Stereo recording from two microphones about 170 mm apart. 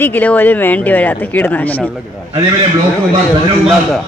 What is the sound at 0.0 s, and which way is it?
Speech, 10° left (ahead or behind).